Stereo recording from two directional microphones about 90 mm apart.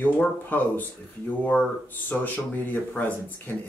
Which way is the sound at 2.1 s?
20° left (ahead or behind).